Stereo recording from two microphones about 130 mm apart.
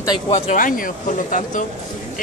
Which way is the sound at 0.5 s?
90° left.